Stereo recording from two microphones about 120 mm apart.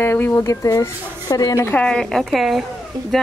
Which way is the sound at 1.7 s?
10° left (ahead or behind).